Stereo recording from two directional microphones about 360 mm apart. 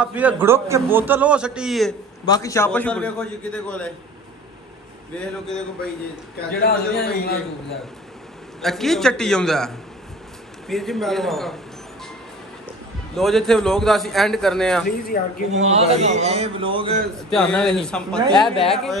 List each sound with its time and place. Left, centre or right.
0.0 s a man's voice: centre
5.1 s a man's voice: centre
6.6 s a man's voice: left
8.5 s a man's voice: centre
13.1 s a man's voice: centre
14.9 s a man's voice: left
15.5 s a man's voice: centre
17.3 s a man's voice: centre